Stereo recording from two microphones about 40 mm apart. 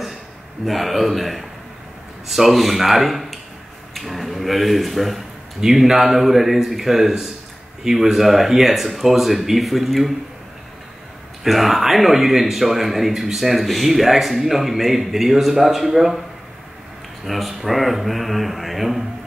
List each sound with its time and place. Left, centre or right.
0.7 s speech: centre
11.4 s speech: centre
17.2 s speech: centre